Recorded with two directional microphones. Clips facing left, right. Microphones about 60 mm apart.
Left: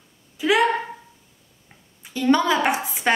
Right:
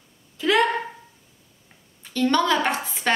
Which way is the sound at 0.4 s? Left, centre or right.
Centre.